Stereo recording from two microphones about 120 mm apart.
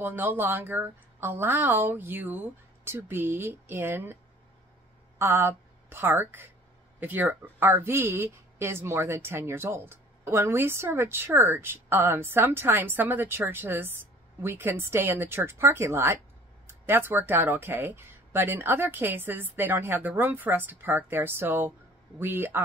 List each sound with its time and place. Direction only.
0.0 s speech: 15° right (ahead or behind)
5.2 s a woman's voice: 20° right (ahead or behind)